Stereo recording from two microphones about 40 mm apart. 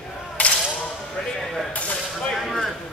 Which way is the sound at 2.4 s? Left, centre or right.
Centre.